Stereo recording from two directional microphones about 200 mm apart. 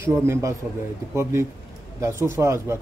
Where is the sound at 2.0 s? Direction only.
15° right (ahead or behind).